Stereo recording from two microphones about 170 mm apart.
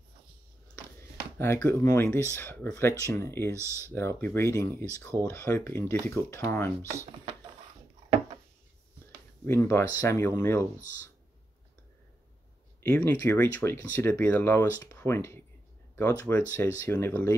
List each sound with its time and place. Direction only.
1.4 s speech: 15° left (ahead or behind)
3.5 s speech: 15° right (ahead or behind)
3.9 s speech: 15° left (ahead or behind)
9.5 s speech: 15° left (ahead or behind)
12.8 s speech: 10° left (ahead or behind)